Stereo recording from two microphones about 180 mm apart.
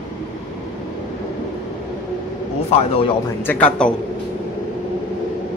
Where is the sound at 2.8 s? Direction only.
35° left (ahead or behind).